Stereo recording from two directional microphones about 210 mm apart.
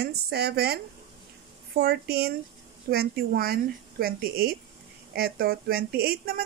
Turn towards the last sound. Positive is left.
turn(degrees=-45)  # may be behind; listen again after turning